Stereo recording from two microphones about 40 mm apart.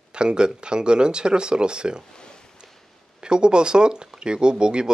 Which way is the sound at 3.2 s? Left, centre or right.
Right.